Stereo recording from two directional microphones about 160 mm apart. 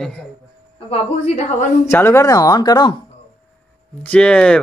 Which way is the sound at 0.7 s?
40° left (ahead or behind).